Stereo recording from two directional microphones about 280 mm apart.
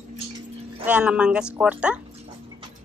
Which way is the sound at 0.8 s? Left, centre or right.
Centre.